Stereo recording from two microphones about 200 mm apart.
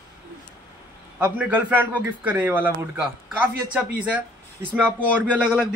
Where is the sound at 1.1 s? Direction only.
5° right (ahead or behind).